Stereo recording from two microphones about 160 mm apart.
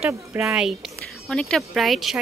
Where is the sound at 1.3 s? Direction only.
5° left (ahead or behind).